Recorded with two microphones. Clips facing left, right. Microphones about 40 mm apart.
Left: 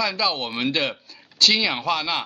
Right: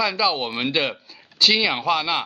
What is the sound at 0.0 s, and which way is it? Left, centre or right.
Speech, centre.